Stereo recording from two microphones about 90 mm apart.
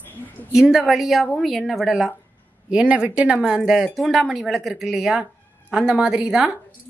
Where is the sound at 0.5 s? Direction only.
5° right (ahead or behind).